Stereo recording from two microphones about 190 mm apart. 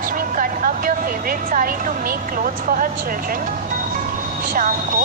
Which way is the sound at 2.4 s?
45° right (ahead or behind).